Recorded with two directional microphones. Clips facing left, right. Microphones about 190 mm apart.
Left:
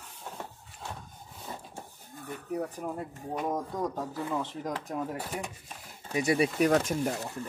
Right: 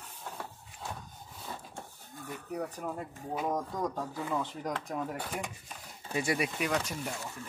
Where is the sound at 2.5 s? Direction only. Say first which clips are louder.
Left 3 dB; 5° left (ahead or behind).